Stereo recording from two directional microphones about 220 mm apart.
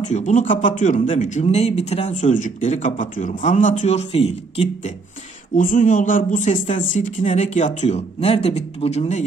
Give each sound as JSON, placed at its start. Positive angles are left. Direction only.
{"t": 0.0, "sound": "speech", "side_deg": 30}
{"t": 6.5, "sound": "speech", "side_deg": 25}
{"t": 6.9, "sound": "speech", "side_deg": 35}